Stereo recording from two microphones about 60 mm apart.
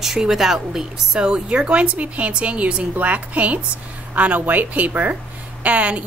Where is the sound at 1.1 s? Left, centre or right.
Centre.